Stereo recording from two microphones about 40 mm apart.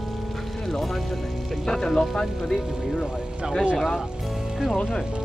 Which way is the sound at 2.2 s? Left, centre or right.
Centre.